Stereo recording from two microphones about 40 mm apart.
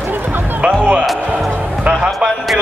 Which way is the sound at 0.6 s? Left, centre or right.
Right.